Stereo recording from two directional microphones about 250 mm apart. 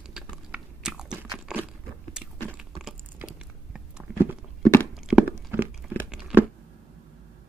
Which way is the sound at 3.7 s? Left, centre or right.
Centre.